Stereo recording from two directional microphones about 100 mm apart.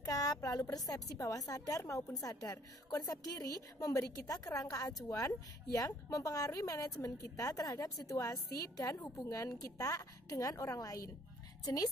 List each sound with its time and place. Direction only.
0.0 s a woman's voice: 40° left (ahead or behind)